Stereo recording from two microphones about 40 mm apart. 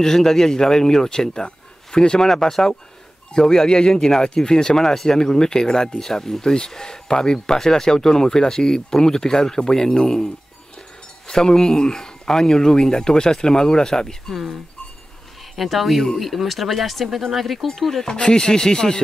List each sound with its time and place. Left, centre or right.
0.0 s speech: centre
15.5 s speech: centre
18.1 s speech: left